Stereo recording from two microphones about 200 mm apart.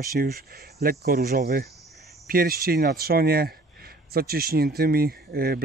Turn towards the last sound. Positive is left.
turn(degrees=-50)  # may be behind; listen again after turning